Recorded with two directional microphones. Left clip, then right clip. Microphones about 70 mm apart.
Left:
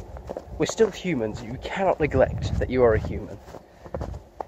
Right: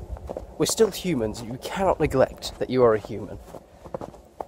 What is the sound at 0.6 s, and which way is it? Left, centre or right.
Speech, right.